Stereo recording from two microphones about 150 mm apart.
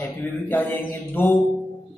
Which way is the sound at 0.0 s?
10° left (ahead or behind).